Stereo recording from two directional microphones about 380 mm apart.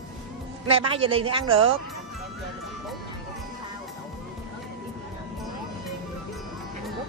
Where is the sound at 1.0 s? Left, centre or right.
Centre.